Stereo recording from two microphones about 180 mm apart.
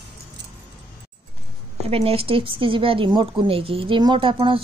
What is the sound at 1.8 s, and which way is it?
Speech, 30° right (ahead or behind).